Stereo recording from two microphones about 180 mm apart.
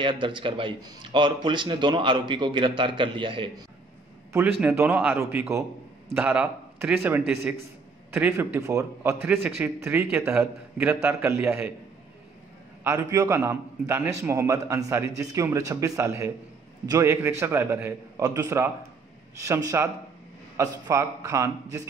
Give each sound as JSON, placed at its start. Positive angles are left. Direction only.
{"t": 0.0, "sound": "speech", "side_deg": -25}
{"t": 4.3, "sound": "a man's voice", "side_deg": -10}
{"t": 12.8, "sound": "a man's voice", "side_deg": -15}